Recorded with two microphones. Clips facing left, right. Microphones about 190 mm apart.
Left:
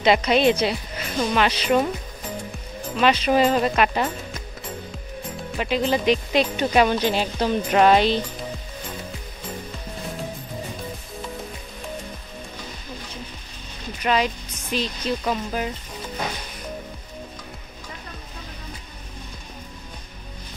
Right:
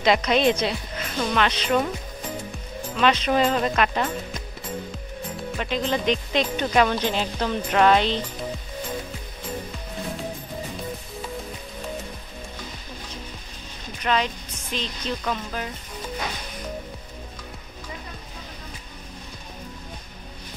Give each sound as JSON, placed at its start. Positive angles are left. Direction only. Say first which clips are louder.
{"t": 0.0, "sound": "speech", "louder": "left 2 dB", "side_deg": 5}
{"t": 3.0, "sound": "speech", "louder": "left 2 dB", "side_deg": 5}
{"t": 5.6, "sound": "speech", "louder": "left 4 dB", "side_deg": 5}
{"t": 14.0, "sound": "speech", "louder": "left 2 dB", "side_deg": 10}